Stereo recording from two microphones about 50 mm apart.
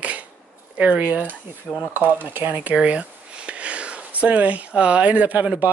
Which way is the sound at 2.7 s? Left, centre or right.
Right.